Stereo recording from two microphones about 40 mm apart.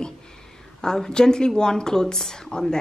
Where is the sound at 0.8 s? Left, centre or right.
Centre.